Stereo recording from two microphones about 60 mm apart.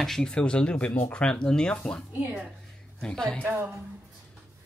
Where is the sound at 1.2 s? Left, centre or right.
Centre.